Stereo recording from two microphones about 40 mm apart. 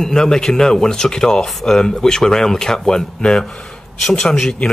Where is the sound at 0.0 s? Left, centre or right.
Centre.